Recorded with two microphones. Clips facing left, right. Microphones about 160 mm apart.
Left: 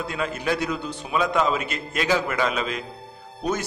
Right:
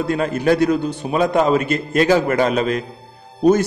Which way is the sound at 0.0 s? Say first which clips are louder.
Right 9 dB; 45° right (ahead or behind).